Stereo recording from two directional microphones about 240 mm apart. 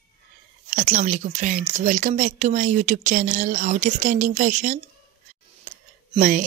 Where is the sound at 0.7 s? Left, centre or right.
Right.